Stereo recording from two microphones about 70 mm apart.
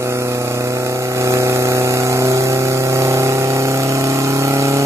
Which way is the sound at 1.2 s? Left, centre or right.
Right.